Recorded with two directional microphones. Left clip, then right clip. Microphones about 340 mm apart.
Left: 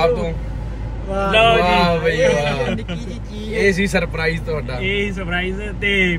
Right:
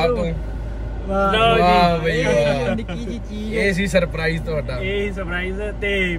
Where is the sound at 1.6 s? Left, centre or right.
Centre.